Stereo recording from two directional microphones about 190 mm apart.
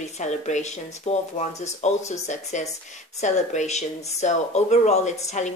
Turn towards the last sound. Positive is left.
turn(degrees=40)  # may be behind; listen again after turning